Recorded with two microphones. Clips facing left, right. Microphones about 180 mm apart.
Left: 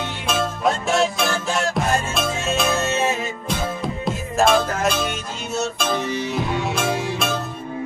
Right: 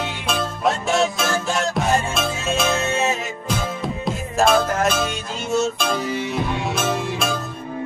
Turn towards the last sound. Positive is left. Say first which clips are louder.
# even
turn(degrees=0)  # may be behind; listen again after turning